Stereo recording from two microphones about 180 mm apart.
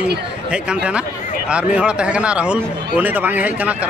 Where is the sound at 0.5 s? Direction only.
5° right (ahead or behind).